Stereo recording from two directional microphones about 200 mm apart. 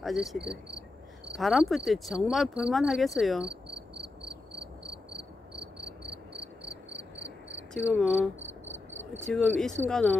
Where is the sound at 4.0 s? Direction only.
25° right (ahead or behind).